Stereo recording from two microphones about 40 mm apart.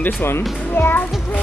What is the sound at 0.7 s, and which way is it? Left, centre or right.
Speech, left.